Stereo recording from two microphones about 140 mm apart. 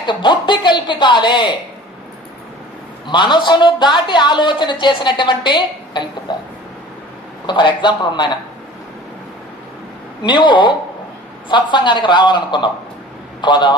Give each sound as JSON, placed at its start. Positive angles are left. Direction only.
{"t": 0.0, "sound": "a woman's voice", "side_deg": 35}
{"t": 3.1, "sound": "a woman's voice", "side_deg": 35}
{"t": 7.4, "sound": "a woman's voice", "side_deg": 35}
{"t": 10.2, "sound": "a woman's voice", "side_deg": 35}